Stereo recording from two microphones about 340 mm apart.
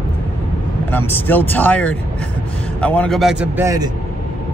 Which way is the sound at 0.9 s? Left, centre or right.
Centre.